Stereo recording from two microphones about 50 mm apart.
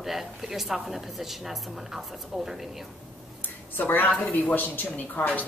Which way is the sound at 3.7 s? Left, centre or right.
Left.